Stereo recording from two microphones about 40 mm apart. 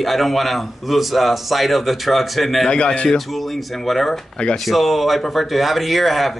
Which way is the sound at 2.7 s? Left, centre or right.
Left.